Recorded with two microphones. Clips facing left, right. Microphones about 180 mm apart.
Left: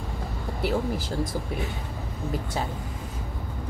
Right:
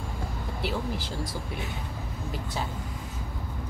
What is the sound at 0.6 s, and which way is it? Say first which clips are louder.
Speech: left 5 dB; 50° left (ahead or behind).